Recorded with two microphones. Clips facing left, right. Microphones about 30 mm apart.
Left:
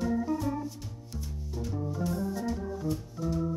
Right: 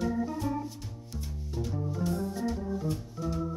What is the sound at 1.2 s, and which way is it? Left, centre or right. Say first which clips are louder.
Music: right 2 dB; centre.